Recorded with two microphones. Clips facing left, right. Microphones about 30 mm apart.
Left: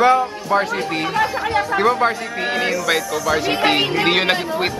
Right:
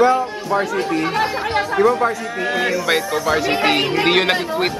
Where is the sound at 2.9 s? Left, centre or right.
Right.